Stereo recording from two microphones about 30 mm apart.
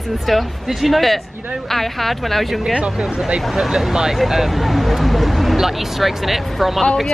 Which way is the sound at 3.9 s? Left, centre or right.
Centre.